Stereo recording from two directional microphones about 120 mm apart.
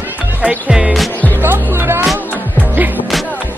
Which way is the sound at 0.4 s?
10° right (ahead or behind).